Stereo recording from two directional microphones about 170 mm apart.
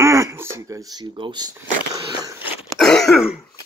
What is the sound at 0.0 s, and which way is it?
Speech, 15° right (ahead or behind).